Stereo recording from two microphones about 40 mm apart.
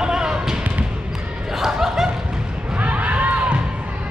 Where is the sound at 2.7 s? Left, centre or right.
Right.